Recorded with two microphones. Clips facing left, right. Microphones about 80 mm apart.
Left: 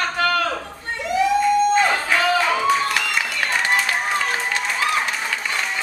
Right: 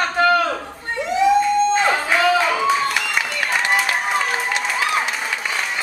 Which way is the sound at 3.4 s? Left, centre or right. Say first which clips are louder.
Right 1 dB; centre.